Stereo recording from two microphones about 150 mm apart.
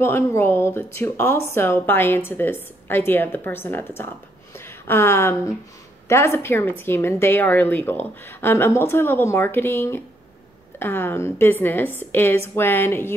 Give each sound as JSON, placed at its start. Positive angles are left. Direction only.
{"t": 0.0, "sound": "speech", "side_deg": 15}
{"t": 4.6, "sound": "a sound", "side_deg": 15}
{"t": 6.0, "sound": "speech", "side_deg": 20}